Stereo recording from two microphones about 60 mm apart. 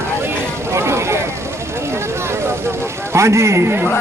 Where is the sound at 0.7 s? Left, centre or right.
Right.